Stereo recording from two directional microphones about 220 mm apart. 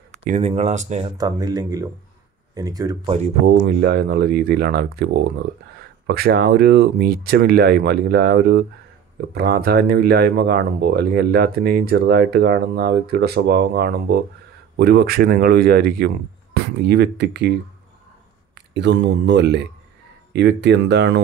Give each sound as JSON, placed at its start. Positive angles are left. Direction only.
{"t": 0.2, "sound": "speech", "side_deg": -30}
{"t": 1.1, "sound": "speech", "side_deg": -15}
{"t": 3.4, "sound": "speech", "side_deg": -50}